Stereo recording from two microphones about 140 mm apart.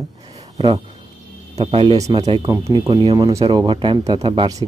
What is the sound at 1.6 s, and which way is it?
Speech, 45° right (ahead or behind).